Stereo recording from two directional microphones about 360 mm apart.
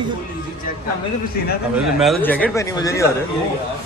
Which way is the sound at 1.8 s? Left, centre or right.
Centre.